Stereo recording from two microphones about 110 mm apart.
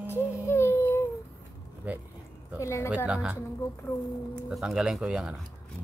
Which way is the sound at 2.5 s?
25° left (ahead or behind).